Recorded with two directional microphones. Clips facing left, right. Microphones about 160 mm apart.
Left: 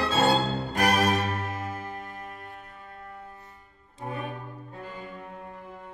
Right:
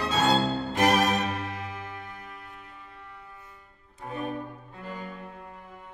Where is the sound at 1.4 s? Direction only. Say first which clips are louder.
Left 2 dB; 45° left (ahead or behind).